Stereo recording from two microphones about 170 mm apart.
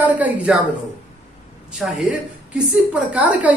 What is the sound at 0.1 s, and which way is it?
Speech, 10° right (ahead or behind).